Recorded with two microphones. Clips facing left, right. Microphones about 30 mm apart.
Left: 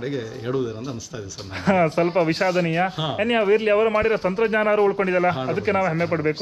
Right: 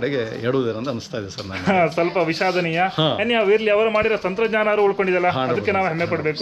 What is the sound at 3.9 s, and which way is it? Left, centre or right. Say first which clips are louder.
A man's voice: right 1 dB; right.